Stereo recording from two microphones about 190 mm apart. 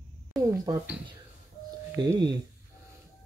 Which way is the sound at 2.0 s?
20° right (ahead or behind).